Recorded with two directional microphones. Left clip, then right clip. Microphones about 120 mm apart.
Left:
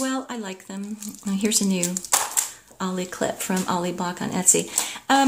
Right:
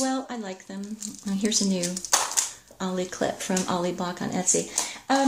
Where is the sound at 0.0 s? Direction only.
15° left (ahead or behind).